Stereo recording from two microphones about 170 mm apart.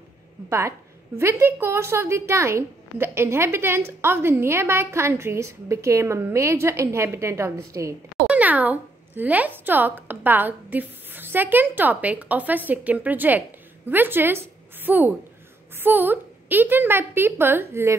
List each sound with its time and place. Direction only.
0.5 s a woman's voice: 15° right (ahead or behind)